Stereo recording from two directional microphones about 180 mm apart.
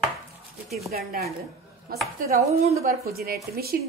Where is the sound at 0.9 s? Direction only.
55° right (ahead or behind).